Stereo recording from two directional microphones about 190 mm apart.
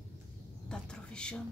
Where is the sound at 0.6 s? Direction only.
5° left (ahead or behind).